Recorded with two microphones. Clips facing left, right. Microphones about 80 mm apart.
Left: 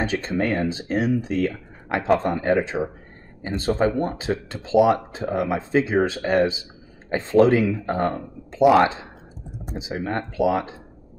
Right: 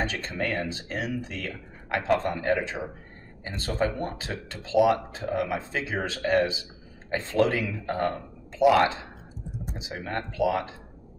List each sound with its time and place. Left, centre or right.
0.0 s speech: left